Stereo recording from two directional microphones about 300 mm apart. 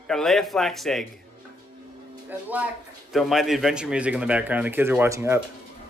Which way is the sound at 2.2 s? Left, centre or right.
Centre.